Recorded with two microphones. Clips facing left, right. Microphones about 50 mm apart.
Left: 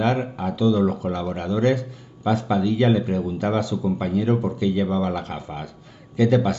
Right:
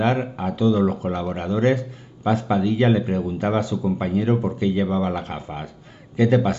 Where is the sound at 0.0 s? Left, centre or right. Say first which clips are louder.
Right 1 dB; right.